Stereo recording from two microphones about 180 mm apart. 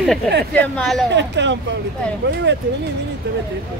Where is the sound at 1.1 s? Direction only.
80° right.